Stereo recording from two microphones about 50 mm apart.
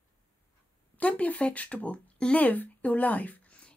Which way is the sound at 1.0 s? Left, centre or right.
Left.